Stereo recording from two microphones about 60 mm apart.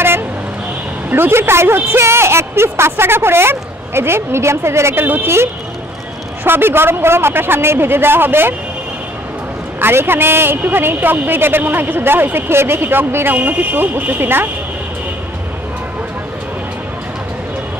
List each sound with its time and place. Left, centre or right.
1.1 s speech: right
5.0 s a woman's voice: right
9.8 s a woman's voice: right